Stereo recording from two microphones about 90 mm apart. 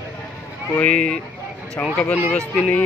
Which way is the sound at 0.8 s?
10° left (ahead or behind).